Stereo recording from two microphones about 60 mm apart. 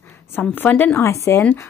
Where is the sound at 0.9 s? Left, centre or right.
Left.